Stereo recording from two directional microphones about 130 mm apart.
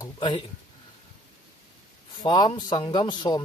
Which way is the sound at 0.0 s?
35° left (ahead or behind).